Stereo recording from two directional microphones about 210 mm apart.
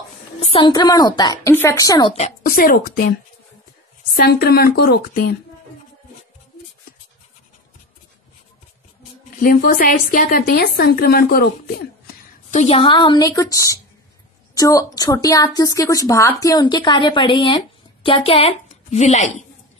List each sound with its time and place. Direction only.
0.5 s a woman's voice: 25° left (ahead or behind); by 5.4 s 45° left (ahead or behind)
9.4 s a woman's voice: 45° left (ahead or behind)
12.4 s a woman's voice: 35° left (ahead or behind)